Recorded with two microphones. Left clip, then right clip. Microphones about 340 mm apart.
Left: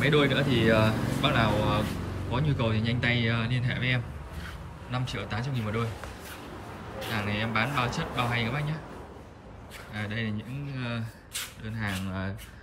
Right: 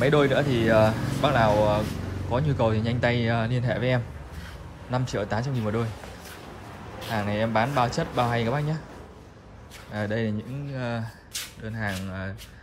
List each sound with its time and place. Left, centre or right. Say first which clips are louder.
0.0 s speech: right 3 dB; centre
7.0 s speech: right 4 dB; centre
9.9 s speech: right 6 dB; centre